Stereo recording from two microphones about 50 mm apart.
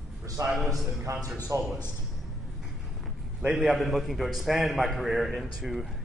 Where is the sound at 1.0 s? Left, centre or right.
Right.